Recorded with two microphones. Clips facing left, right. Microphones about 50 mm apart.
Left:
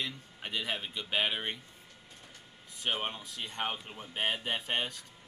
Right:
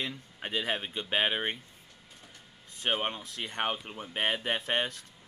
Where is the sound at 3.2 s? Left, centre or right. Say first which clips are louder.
Right 3 dB; right.